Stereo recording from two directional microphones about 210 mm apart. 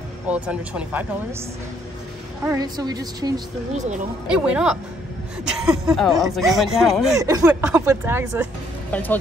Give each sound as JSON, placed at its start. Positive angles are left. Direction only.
{"t": 0.3, "sound": "speech", "side_deg": -5}
{"t": 2.4, "sound": "a woman's voice", "side_deg": -15}
{"t": 4.3, "sound": "speech", "side_deg": -5}
{"t": 7.2, "sound": "a woman's voice", "side_deg": -15}
{"t": 8.9, "sound": "speech", "side_deg": 10}